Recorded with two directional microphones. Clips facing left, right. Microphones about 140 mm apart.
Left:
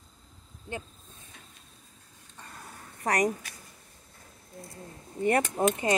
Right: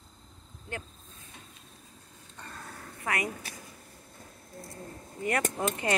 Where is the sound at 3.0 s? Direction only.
40° left (ahead or behind).